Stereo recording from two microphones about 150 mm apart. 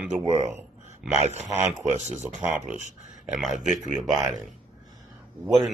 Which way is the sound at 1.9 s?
50° right (ahead or behind).